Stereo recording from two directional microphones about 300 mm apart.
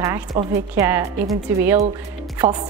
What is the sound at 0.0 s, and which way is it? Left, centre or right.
Speech, centre.